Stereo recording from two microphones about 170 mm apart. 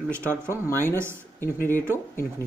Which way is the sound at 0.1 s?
10° left (ahead or behind).